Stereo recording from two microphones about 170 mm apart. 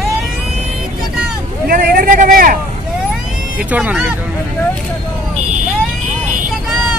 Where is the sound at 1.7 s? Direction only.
55° right (ahead or behind).